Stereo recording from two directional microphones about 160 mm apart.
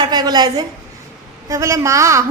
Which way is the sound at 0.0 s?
25° right (ahead or behind).